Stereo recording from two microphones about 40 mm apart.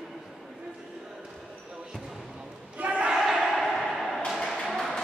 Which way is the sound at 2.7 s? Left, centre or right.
Right.